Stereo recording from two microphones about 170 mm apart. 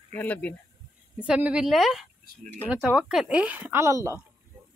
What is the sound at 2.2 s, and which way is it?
Speech, 65° right (ahead or behind).